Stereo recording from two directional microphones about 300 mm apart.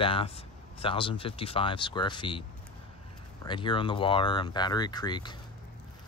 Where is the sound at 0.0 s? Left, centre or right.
Centre.